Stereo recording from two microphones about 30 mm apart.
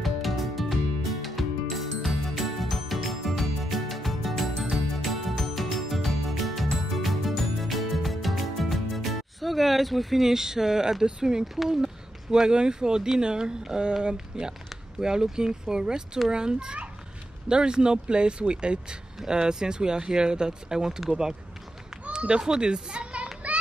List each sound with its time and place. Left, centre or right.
0.0 s music: centre
11.1 s speech: right
11.4 s speech: centre
11.8 s speech: right
22.6 s speech: right
23.4 s children playing: right